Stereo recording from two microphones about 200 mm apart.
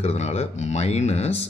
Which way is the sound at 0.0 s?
30° left (ahead or behind).